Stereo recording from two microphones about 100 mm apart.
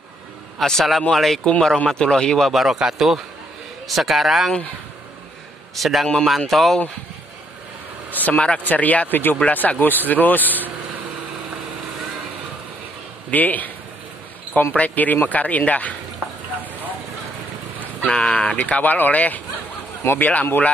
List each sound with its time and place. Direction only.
0.6 s speech: 5° left (ahead or behind)
5.8 s speech: centre (ahead or behind)
8.1 s speech: 15° left (ahead or behind)
13.3 s speech: 15° left (ahead or behind)
18.0 s speech: 10° left (ahead or behind)